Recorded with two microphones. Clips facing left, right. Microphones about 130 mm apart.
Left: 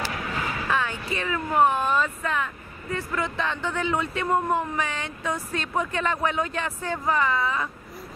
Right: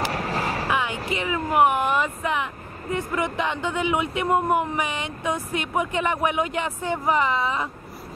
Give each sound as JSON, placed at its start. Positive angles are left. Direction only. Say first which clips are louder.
{"t": 0.1, "sound": "a sound", "louder": "right 4 dB", "side_deg": -35}
{"t": 0.7, "sound": "music", "louder": "left 1 dB", "side_deg": -15}
{"t": 1.1, "sound": "speech", "louder": "right 2 dB", "side_deg": -15}